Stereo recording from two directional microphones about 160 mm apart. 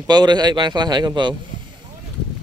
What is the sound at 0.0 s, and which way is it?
A man's voice, 25° right (ahead or behind).